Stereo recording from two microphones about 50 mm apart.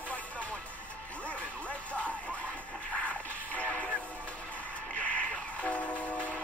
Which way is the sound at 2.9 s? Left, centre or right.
Left.